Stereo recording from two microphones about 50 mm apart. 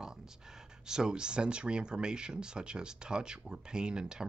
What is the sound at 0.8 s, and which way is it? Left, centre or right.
Speech, centre.